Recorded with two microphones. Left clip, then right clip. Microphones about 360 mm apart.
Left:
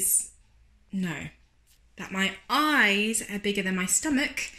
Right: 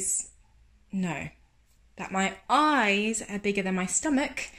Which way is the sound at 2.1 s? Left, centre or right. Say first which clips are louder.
Right 1 dB; centre.